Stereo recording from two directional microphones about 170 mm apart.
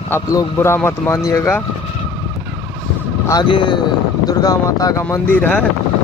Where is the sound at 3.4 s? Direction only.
30° left (ahead or behind).